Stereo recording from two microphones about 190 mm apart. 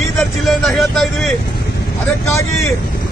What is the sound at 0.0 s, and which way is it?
Vehicle, centre (ahead or behind).